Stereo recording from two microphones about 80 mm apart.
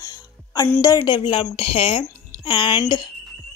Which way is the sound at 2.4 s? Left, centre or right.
Left.